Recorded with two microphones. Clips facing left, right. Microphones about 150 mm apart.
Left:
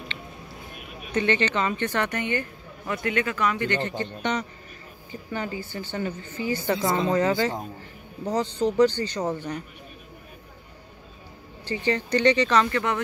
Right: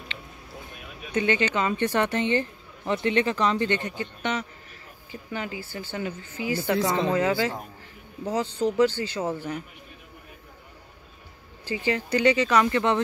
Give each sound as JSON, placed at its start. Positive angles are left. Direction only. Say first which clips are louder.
{"t": 1.1, "sound": "speech", "louder": "even", "side_deg": -10}
{"t": 3.8, "sound": "speech", "louder": "left 2 dB", "side_deg": -10}
{"t": 6.8, "sound": "speech", "louder": "even", "side_deg": 10}
{"t": 7.2, "sound": "speech", "louder": "left 1 dB", "side_deg": -5}
{"t": 11.6, "sound": "speech", "louder": "left 1 dB", "side_deg": -5}
{"t": 12.6, "sound": "speech", "louder": "right 3 dB", "side_deg": -20}